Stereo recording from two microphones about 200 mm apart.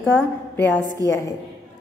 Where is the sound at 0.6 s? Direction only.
10° left (ahead or behind).